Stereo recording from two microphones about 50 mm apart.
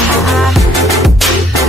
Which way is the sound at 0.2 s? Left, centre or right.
Centre.